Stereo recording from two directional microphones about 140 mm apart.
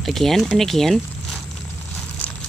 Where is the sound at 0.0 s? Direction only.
Centre (ahead or behind).